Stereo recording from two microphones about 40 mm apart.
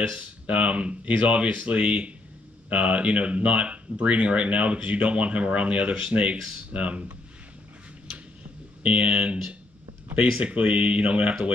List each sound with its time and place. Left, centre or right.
0.2 s speech: right
8.8 s speech: right